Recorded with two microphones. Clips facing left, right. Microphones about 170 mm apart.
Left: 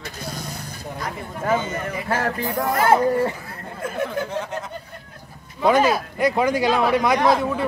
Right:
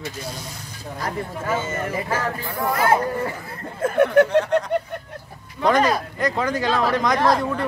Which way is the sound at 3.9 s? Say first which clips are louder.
Right 10 dB; 70° right (ahead or behind).